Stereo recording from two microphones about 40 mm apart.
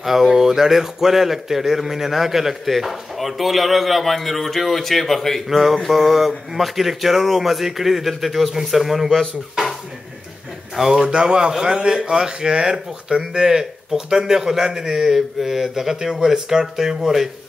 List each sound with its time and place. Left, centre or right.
0.0 s speech: centre
10.8 s a man's voice: centre